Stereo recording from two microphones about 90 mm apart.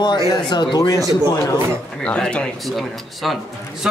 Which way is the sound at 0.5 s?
50° left (ahead or behind).